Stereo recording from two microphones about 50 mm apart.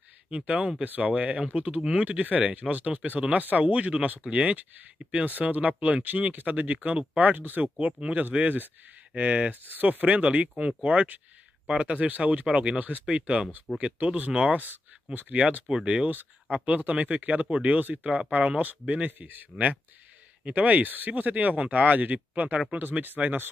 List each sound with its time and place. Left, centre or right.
0.5 s speech: right
2.0 s speech: right
20.4 s speech: right
22.8 s speech: right